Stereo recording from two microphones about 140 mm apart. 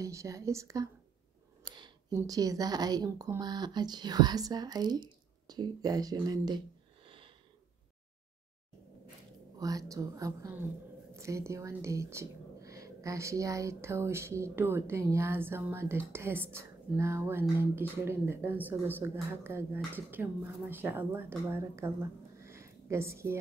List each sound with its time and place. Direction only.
0.0 s speech: 25° right (ahead or behind)
1.6 s a sound: 30° right (ahead or behind)
2.1 s speech: 25° right (ahead or behind)
7.1 s wheeze: 40° right (ahead or behind)
9.6 s a woman's voice: 25° right (ahead or behind)